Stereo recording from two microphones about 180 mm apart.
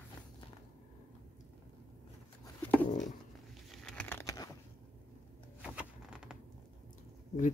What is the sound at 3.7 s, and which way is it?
Crumpling, 5° left (ahead or behind).